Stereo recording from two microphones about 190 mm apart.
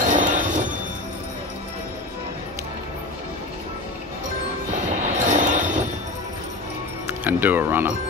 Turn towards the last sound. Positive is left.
turn(degrees=-10)  # may be behind; listen again after turning